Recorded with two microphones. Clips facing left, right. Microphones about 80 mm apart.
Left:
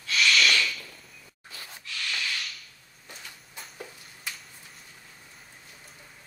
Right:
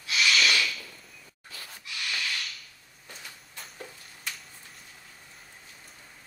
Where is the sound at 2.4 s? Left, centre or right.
Centre.